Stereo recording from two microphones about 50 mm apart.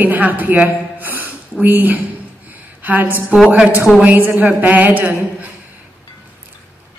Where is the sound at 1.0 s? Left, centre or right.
Right.